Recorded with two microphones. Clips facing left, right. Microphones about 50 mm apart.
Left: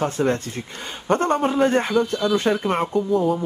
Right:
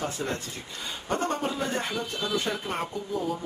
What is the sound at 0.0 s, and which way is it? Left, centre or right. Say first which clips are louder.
Speech: left 10 dB; left.